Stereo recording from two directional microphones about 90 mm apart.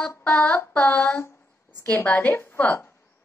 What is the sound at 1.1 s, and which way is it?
Speech, 30° left (ahead or behind).